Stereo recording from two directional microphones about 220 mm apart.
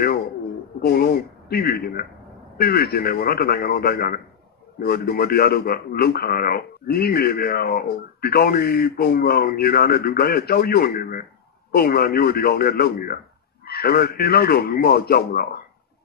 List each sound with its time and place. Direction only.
0.7 s a man's voice: 45° left (ahead or behind)